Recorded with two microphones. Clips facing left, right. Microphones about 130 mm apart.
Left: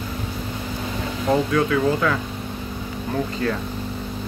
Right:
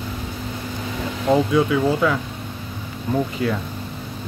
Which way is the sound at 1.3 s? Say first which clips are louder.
Right 2 dB; 15° right (ahead or behind).